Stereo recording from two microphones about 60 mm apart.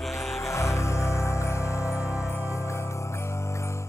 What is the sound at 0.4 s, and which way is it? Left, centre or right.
Music, left.